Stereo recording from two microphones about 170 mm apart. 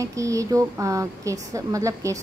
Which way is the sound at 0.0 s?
20° right (ahead or behind).